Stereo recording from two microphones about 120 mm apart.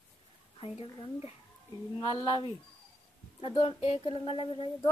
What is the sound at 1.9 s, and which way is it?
A woman's voice, 40° left (ahead or behind).